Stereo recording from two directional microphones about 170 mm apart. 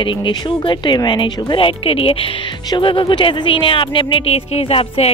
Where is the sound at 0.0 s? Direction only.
30° left (ahead or behind).